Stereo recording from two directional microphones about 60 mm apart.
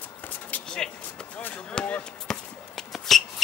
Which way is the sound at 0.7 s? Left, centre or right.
Centre.